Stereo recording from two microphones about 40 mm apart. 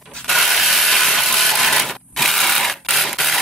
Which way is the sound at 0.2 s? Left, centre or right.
Centre.